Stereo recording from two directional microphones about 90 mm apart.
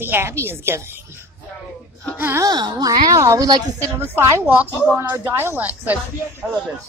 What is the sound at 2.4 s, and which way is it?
A woman's voice, 50° right (ahead or behind).